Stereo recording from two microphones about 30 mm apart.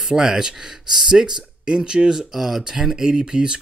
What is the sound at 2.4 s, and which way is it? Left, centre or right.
Speech, centre.